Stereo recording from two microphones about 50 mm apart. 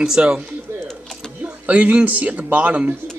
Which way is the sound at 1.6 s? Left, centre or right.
Right.